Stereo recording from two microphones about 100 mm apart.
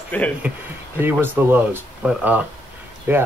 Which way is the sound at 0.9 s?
20° right (ahead or behind).